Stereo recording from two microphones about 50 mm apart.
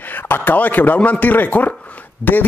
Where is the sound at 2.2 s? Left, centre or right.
Left.